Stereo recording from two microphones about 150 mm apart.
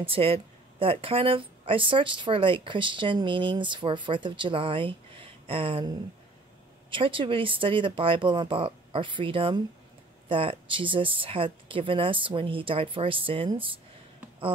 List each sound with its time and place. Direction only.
0.0 s speech: 40° right (ahead or behind)